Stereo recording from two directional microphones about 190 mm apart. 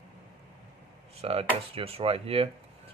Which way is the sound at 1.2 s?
30° right (ahead or behind).